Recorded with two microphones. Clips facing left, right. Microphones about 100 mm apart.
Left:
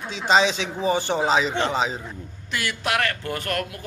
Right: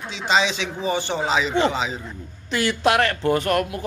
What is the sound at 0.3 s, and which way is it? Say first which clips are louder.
A man's voice: left 2 dB; 40° left (ahead or behind).